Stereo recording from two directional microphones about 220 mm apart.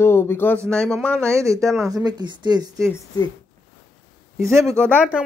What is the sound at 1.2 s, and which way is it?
Speech, 15° right (ahead or behind).